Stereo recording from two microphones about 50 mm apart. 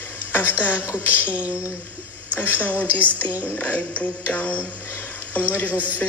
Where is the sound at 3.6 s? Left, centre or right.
Left.